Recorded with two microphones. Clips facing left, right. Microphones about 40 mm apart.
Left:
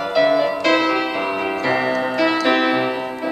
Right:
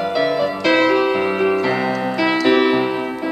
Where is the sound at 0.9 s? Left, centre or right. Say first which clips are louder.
Right 4 dB; centre.